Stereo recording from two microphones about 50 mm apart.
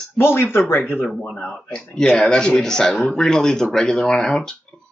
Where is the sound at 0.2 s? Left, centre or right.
Left.